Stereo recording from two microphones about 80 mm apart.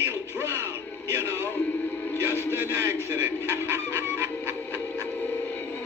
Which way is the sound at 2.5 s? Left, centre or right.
Right.